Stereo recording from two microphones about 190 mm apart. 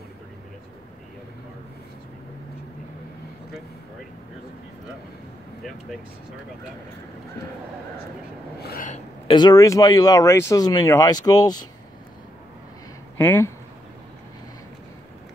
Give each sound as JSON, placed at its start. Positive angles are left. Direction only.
{"t": 8.5, "sound": "filing", "side_deg": 50}
{"t": 9.3, "sound": "speech", "side_deg": 20}
{"t": 13.2, "sound": "speech", "side_deg": 10}